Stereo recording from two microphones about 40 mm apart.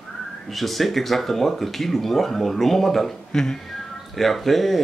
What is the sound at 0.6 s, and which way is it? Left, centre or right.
Speech, centre.